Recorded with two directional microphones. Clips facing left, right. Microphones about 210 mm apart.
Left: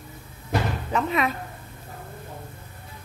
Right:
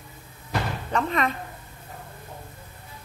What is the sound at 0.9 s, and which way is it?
Speech, 5° left (ahead or behind).